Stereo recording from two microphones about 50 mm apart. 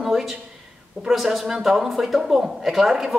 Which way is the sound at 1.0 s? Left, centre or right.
Centre.